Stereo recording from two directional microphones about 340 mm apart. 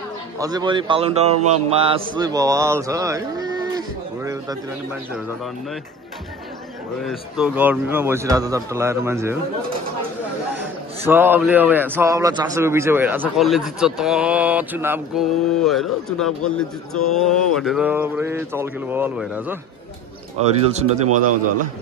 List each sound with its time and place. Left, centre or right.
0.4 s a man's voice: centre
7.0 s a man's voice: centre
11.1 s a man's voice: centre
21.1 s a man's voice: right